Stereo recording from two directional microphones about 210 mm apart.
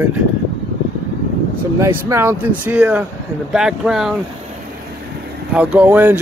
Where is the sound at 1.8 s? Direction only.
15° right (ahead or behind).